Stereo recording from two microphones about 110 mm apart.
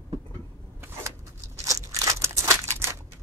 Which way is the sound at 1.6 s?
30° right (ahead or behind).